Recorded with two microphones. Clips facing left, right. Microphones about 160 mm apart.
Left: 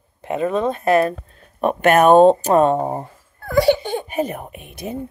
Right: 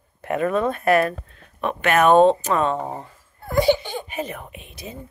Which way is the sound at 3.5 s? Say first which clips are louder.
Left 3 dB; 65° left (ahead or behind).